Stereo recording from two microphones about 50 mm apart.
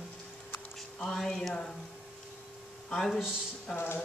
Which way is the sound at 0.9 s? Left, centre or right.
Centre.